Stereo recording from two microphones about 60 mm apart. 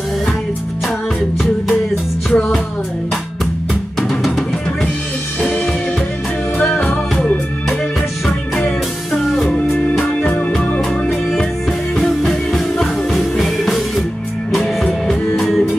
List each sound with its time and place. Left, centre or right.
2.3 s music: centre
4.1 s music: centre
6.6 s music: left
8.5 s music: centre
10.8 s music: centre